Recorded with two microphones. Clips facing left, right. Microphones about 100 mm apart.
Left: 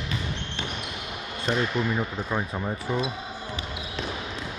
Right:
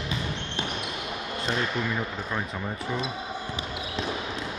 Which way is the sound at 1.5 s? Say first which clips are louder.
Left 3 dB; 15° left (ahead or behind).